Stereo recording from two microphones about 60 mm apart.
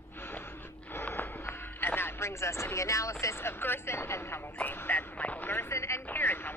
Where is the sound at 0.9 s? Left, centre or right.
Left.